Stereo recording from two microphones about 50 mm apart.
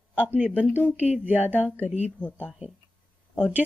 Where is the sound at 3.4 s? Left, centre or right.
Right.